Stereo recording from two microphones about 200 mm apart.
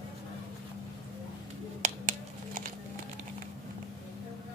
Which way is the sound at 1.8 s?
35° right (ahead or behind).